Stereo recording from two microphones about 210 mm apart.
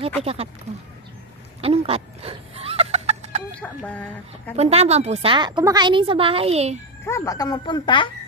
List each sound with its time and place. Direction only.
0.2 s a woman's voice: 30° right (ahead or behind)
1.6 s chicken: 30° right (ahead or behind)
3.6 s speech: 5° left (ahead or behind)
4.6 s a woman's voice: 30° right (ahead or behind)
7.1 s speech: 15° left (ahead or behind)